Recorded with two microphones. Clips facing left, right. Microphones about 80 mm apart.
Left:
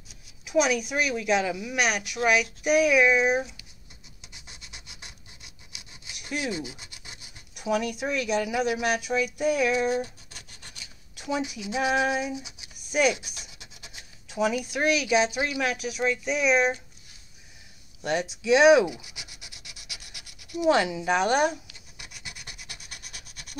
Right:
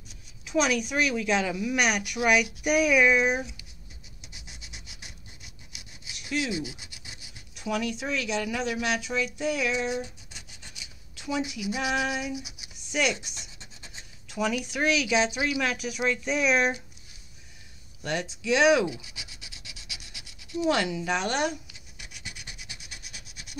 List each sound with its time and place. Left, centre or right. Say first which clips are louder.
0.5 s speech: left 2 dB; centre
4.2 s scratch: even; centre
6.4 s female singing: even; left
7.6 s speech: left 3 dB; centre
10.3 s scratch: even; centre
11.1 s speech: left 1 dB; left
11.7 s female singing: left 4 dB; left
12.9 s speech: left 4 dB; centre
13.5 s scratch: even; left
13.8 s speech: left 1 dB; centre
18.0 s speech: left 3 dB; centre
19.8 s rub: left 1 dB; right
20.5 s speech: left 3 dB; centre
22.1 s rub: even; centre